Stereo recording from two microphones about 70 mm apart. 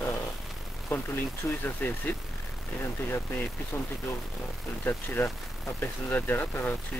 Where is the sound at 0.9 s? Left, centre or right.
Left.